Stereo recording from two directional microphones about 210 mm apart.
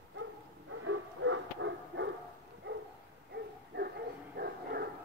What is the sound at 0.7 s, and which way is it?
Bow-wow, 70° right (ahead or behind).